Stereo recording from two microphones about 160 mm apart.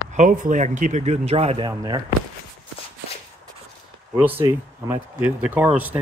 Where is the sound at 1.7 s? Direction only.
25° right (ahead or behind).